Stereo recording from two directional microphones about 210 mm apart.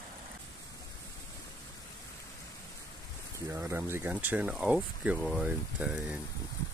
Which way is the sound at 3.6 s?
10° right (ahead or behind).